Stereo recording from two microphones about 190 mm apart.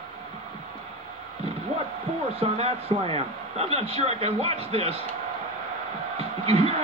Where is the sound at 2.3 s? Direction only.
30° right (ahead or behind).